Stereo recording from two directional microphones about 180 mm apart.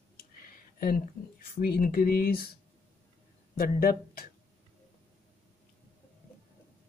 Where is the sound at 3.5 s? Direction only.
55° left (ahead or behind).